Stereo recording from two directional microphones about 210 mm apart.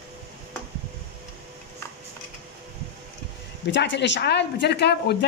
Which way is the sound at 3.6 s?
55° left (ahead or behind).